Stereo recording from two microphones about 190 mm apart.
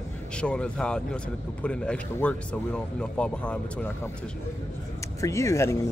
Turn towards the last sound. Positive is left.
turn(degrees=15)  # may be behind; listen again after turning